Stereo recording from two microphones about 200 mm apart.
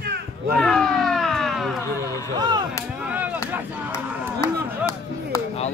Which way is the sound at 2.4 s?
20° right (ahead or behind).